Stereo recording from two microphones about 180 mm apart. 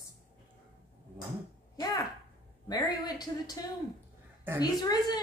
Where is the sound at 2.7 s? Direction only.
25° left (ahead or behind).